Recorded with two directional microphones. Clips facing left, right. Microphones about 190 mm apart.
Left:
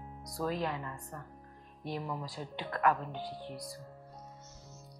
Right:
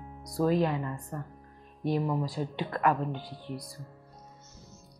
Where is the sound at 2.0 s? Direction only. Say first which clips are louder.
Right 9 dB; 35° right (ahead or behind).